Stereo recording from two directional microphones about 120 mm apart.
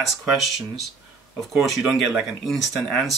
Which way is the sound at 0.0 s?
Centre (ahead or behind).